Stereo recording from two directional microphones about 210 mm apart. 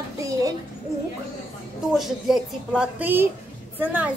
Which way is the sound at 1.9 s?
Centre (ahead or behind).